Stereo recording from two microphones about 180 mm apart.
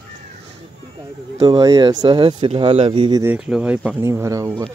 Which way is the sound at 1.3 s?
20° right (ahead or behind).